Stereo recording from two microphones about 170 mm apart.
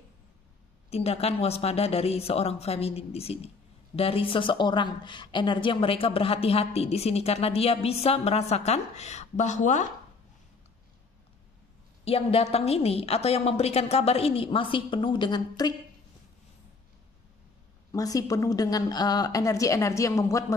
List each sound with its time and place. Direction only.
0.8 s a woman's voice: 35° left (ahead or behind)
12.0 s a woman's voice: 35° left (ahead or behind)
17.9 s a woman's voice: 20° left (ahead or behind)